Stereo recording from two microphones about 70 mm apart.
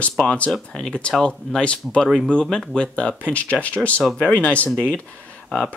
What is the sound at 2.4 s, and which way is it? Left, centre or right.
Speech, centre.